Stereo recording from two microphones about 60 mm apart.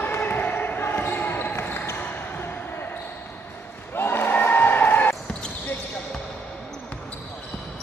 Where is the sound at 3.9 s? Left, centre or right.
Left.